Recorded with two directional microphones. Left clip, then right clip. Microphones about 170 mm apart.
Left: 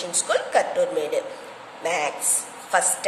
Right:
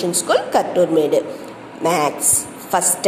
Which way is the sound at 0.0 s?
15° right (ahead or behind).